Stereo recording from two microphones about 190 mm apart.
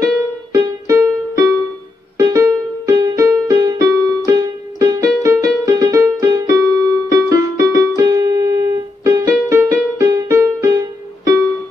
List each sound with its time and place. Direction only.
0.0 s music: 15° right (ahead or behind)